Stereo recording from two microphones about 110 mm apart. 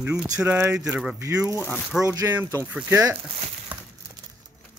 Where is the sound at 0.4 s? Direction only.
20° right (ahead or behind).